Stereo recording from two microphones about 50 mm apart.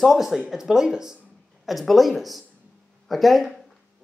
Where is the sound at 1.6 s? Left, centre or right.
Centre.